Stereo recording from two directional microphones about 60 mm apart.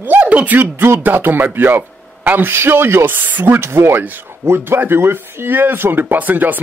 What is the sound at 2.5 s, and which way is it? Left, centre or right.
Speech, right.